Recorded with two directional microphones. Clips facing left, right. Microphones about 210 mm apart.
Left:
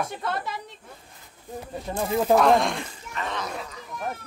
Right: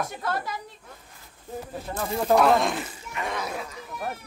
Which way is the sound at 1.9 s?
20° left (ahead or behind).